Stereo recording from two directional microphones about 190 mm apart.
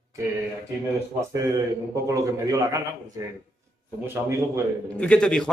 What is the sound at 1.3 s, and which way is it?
A man's voice, 15° right (ahead or behind).